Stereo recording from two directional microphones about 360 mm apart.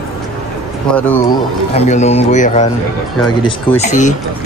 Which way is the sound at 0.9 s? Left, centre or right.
Centre.